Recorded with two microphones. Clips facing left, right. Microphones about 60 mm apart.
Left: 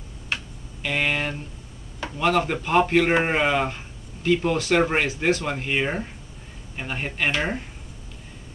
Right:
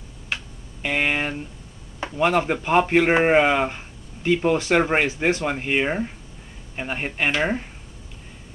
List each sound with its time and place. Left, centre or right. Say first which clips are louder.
0.8 s speech: right 2 dB; centre